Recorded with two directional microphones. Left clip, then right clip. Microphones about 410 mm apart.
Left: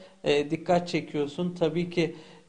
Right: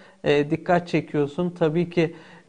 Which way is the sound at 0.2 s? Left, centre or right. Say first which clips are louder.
Right 4 dB; right.